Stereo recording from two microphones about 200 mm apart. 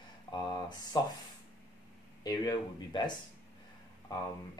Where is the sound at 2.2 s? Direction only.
20° left (ahead or behind).